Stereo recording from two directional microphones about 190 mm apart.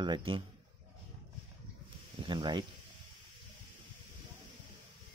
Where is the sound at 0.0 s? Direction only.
25° right (ahead or behind).